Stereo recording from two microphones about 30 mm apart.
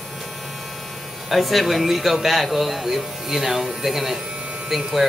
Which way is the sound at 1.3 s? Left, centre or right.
Centre.